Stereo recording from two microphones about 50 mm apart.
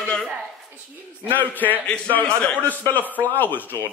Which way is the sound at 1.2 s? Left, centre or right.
Left.